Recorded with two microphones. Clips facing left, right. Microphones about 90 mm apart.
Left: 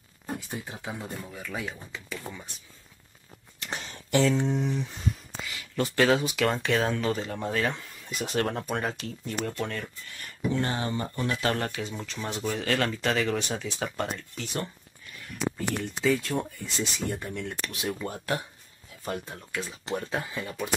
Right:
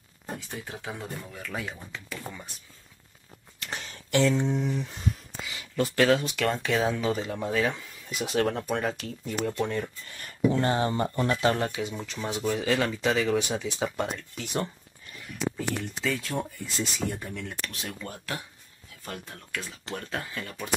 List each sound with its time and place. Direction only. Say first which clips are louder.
0.5 s speech: left 1 dB; 10° left (ahead or behind)
3.7 s a sound: left 1 dB; 30° left (ahead or behind)
4.2 s speech: right 1 dB; centre (ahead or behind)
9.4 s speech: right 4 dB; 15° right (ahead or behind)
10.2 s speech: right 4 dB; 35° right (ahead or behind)
11.5 s speech: right 2 dB; 15° right (ahead or behind)
16.0 s speech: left 6 dB; centre (ahead or behind)
19.0 s speech: left 5 dB; 15° left (ahead or behind)